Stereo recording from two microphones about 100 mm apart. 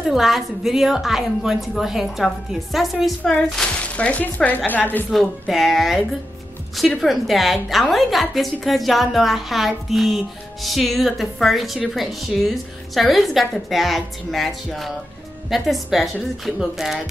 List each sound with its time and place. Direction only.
0.0 s a woman's voice: centre (ahead or behind); by 5.0 s 20° left (ahead or behind)
5.1 s a woman's voice: centre (ahead or behind)